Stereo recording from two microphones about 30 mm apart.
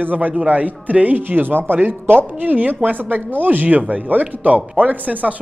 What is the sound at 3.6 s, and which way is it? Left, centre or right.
Speech, right.